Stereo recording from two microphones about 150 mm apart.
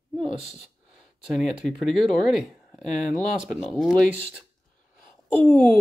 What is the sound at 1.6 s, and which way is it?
Speech, centre (ahead or behind).